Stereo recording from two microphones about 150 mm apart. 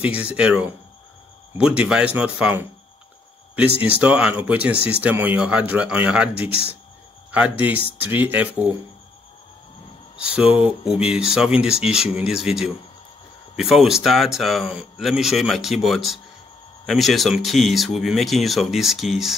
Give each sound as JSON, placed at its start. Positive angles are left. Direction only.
{"t": 0.0, "sound": "speech", "side_deg": -10}
{"t": 3.8, "sound": "speech", "side_deg": -10}
{"t": 10.1, "sound": "speech", "side_deg": -5}